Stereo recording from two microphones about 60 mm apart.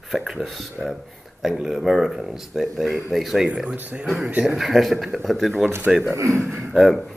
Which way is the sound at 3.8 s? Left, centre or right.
Right.